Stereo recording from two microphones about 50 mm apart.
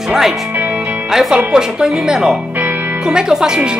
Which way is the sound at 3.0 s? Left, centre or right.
Centre.